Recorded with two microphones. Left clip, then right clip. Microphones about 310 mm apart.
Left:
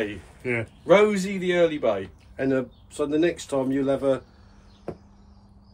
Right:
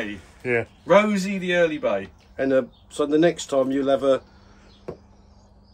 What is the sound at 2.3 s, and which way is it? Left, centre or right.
Speech, right.